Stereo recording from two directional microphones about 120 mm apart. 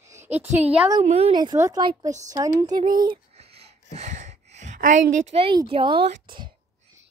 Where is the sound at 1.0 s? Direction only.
60° right (ahead or behind).